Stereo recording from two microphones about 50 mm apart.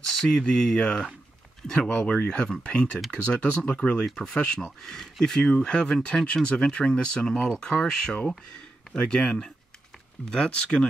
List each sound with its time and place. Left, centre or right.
0.1 s speech: centre